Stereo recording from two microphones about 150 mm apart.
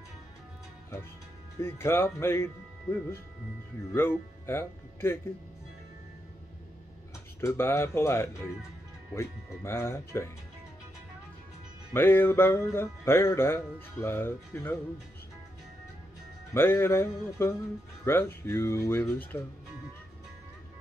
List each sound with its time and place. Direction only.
1.6 s music: 15° left (ahead or behind)
4.5 s speech: 15° left (ahead or behind)
7.3 s music: 15° left (ahead or behind)
11.9 s music: 15° left (ahead or behind)
16.5 s music: 15° left (ahead or behind)